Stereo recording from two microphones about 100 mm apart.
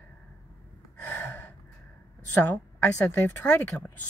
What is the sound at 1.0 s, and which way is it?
Gasp, 20° left (ahead or behind).